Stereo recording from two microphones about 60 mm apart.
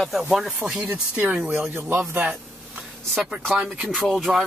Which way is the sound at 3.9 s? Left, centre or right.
Centre.